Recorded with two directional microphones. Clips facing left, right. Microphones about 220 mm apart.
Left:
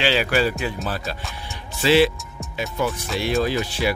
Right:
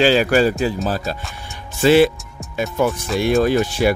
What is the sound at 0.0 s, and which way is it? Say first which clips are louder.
Speech: right 6 dB; 45° right (ahead or behind).